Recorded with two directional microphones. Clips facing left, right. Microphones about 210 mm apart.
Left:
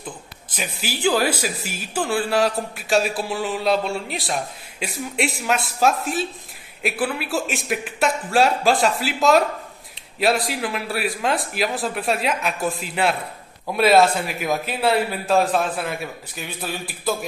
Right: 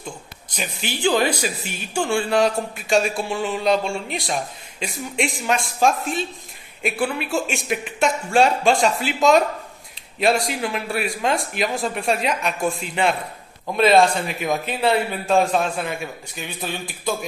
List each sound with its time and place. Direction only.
0.5 s a man's voice: 5° left (ahead or behind)